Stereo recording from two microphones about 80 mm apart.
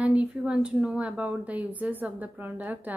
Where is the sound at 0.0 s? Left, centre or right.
Centre.